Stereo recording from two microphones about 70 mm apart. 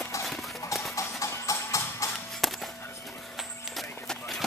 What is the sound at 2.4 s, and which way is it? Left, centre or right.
Music, centre.